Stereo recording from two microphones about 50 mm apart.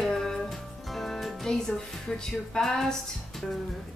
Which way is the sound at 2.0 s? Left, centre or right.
Centre.